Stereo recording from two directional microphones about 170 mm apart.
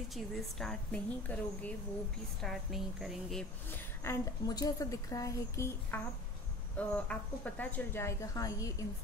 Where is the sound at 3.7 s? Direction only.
15° left (ahead or behind).